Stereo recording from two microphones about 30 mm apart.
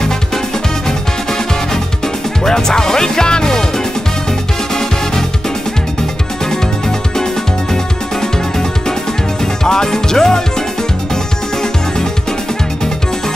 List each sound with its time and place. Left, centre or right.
2.4 s music: centre
7.7 s music: centre